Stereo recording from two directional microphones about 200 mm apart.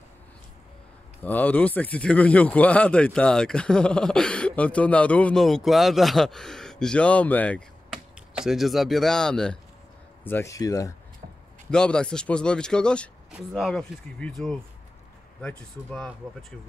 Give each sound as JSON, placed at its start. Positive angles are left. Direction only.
{"t": 1.2, "sound": "speech", "side_deg": 5}
{"t": 11.7, "sound": "speech", "side_deg": 5}